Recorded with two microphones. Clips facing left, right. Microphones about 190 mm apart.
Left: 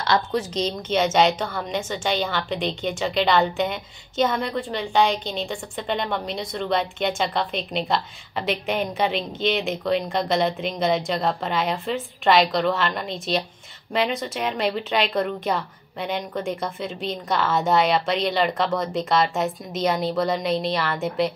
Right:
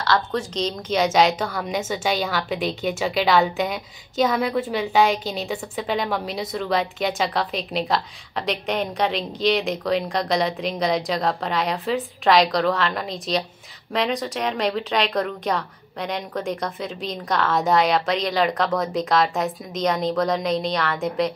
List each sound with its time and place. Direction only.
0.0 s a woman's voice: 20° left (ahead or behind)
0.6 s a woman's voice: 5° left (ahead or behind)